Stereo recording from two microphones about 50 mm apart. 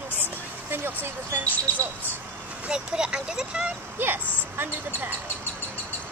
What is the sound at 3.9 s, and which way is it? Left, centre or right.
Speech, right.